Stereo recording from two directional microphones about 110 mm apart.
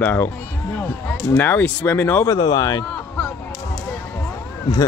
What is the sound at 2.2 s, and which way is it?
Speech, 35° left (ahead or behind).